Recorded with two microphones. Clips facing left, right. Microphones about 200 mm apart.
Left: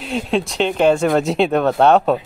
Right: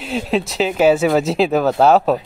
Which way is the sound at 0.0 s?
Centre (ahead or behind).